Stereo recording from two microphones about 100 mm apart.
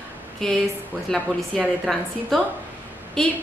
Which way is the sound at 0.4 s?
5° left (ahead or behind).